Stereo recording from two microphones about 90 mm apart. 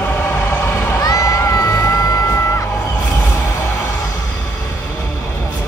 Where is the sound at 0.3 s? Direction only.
25° left (ahead or behind).